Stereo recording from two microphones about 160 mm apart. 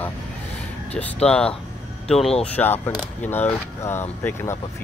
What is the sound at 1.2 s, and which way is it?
Speech, 5° left (ahead or behind).